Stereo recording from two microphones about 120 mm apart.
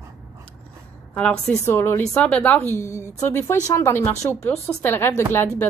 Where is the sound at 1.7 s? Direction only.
20° left (ahead or behind).